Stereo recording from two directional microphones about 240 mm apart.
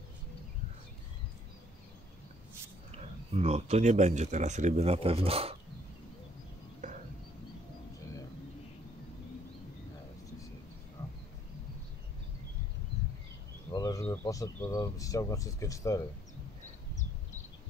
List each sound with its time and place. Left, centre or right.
3.3 s speech: right
6.8 s a sound: right
13.7 s speech: centre